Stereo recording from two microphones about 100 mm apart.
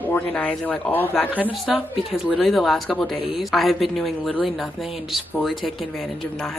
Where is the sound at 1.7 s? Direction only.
10° right (ahead or behind).